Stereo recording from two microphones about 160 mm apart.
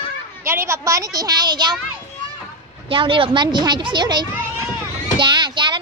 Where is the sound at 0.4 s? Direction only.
15° right (ahead or behind).